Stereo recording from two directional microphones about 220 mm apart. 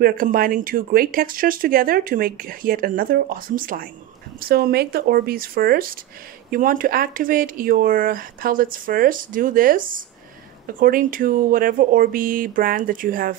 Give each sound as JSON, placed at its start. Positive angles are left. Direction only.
{"t": 0.0, "sound": "speech", "side_deg": -40}